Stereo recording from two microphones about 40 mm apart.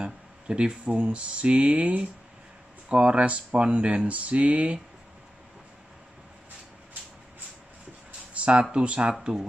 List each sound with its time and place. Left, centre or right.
0.0 s speech: right
8.4 s a sound: right
8.7 s speech: right
9.2 s speech: centre